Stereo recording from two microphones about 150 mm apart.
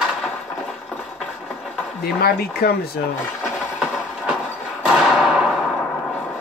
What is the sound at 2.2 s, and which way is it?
Speech, 90° left.